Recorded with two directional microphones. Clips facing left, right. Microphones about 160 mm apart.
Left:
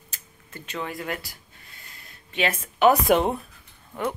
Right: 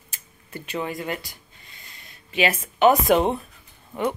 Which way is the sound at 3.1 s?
Centre (ahead or behind).